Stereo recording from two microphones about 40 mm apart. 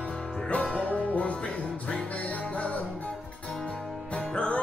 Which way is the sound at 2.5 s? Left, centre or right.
Left.